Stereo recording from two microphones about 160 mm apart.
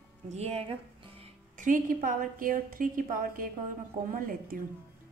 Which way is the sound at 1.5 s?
55° right (ahead or behind).